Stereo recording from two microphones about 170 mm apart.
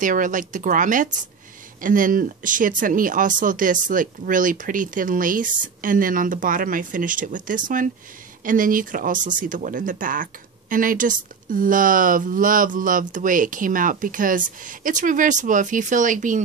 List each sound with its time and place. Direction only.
0.0 s speech: 50° right (ahead or behind)